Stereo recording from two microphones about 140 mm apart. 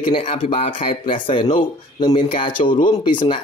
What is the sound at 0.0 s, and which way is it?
Speech, 40° left (ahead or behind).